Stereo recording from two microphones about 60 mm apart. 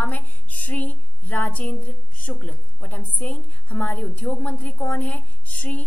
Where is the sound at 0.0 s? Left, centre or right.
Left.